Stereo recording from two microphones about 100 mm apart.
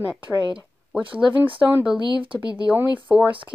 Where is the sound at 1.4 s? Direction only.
20° right (ahead or behind).